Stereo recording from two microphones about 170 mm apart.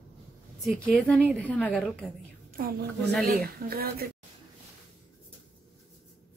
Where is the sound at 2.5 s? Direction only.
60° right (ahead or behind).